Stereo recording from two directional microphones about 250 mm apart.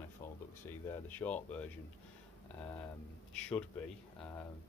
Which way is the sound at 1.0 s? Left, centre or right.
Centre.